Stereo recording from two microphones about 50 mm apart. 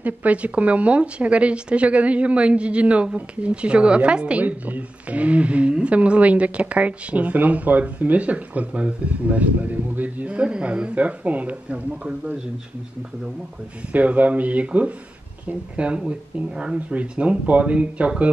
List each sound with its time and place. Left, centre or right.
0.0 s speech: right
13.9 s speech: right